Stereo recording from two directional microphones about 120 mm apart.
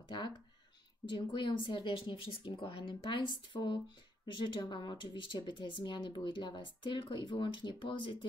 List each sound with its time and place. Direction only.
1.0 s speech: 40° left (ahead or behind)